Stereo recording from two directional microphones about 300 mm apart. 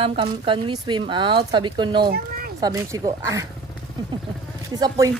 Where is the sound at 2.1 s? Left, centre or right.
Right.